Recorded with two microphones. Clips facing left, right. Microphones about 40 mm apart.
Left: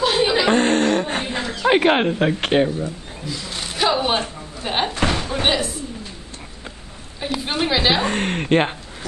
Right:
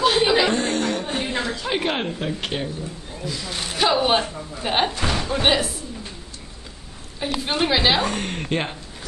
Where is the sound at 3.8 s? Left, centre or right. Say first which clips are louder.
Even; centre.